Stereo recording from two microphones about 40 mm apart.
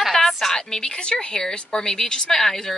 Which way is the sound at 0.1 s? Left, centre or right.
Centre.